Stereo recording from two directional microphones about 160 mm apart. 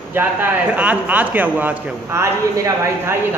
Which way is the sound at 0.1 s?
10° right (ahead or behind).